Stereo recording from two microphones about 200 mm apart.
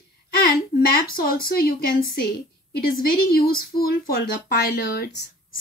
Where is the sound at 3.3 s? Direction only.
50° left (ahead or behind).